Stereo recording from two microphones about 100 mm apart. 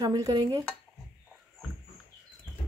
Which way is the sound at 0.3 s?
50° right (ahead or behind).